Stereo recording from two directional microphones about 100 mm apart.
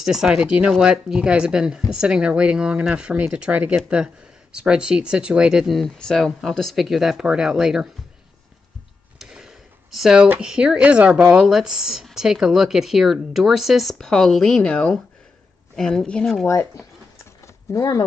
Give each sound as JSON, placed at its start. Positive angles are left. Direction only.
{"t": 0.0, "sound": "speech", "side_deg": -5}
{"t": 9.2, "sound": "a sound", "side_deg": -5}
{"t": 10.4, "sound": "speech", "side_deg": -5}
{"t": 16.4, "sound": "speech", "side_deg": 30}